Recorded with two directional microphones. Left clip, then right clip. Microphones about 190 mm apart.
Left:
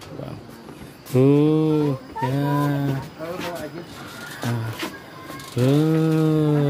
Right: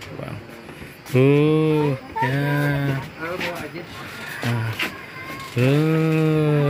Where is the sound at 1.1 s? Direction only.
10° left (ahead or behind).